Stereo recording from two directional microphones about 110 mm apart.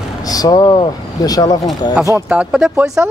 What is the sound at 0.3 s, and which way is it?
Speech, 35° left (ahead or behind).